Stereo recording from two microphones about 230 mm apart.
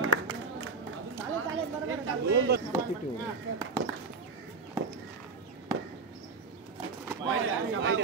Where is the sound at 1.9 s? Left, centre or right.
Right.